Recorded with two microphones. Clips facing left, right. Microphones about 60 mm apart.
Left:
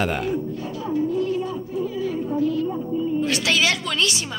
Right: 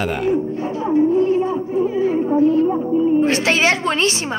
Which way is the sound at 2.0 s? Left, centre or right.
Right.